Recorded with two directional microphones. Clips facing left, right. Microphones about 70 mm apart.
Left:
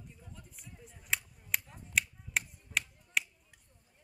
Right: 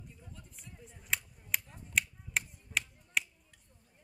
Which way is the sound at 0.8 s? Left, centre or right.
Centre.